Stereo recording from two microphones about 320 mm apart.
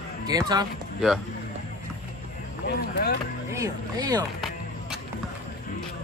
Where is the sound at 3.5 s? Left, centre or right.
Centre.